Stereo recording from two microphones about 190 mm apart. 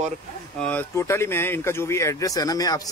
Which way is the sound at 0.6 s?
10° left (ahead or behind).